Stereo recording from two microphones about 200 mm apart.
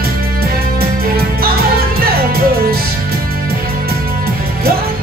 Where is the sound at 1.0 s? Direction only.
50° right (ahead or behind).